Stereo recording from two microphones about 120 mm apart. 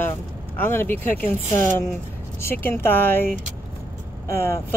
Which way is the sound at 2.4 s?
20° left (ahead or behind).